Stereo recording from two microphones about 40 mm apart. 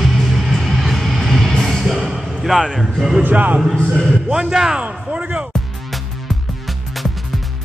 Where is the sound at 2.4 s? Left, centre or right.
Centre.